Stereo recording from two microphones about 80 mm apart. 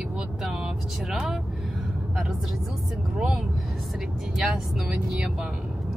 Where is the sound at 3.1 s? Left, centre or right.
Centre.